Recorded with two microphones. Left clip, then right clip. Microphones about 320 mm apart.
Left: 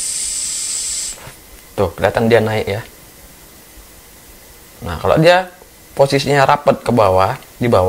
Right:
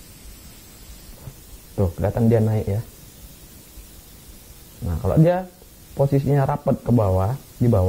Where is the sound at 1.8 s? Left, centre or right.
Centre.